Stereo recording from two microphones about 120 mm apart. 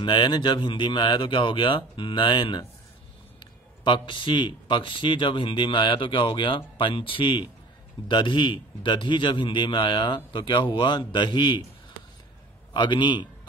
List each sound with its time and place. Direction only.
0.0 s a man's voice: 40° left (ahead or behind)
12.7 s a man's voice: 40° left (ahead or behind)